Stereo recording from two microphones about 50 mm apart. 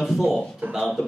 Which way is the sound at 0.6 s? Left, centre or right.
Right.